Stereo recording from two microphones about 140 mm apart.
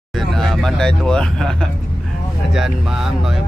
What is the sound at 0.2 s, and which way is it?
Speech, centre (ahead or behind).